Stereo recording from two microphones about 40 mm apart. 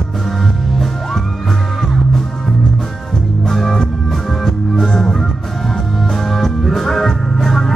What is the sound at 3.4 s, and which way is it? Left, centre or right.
Music, centre.